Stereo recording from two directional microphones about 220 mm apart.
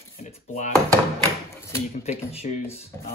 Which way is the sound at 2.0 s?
30° left (ahead or behind).